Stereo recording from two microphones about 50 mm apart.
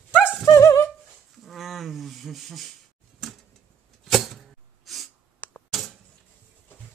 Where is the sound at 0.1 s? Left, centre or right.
Left.